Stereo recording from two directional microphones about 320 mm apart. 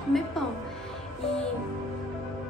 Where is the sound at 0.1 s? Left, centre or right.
Centre.